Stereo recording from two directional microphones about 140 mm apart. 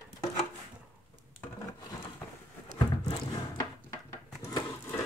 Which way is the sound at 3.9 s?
20° left (ahead or behind).